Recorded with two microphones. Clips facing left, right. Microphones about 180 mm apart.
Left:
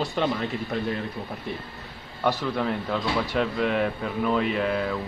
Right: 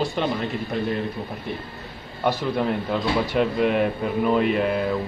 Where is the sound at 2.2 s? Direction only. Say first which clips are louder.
Right 2 dB; 15° right (ahead or behind).